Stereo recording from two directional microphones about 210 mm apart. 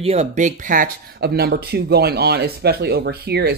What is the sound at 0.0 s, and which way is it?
Speech, 30° right (ahead or behind).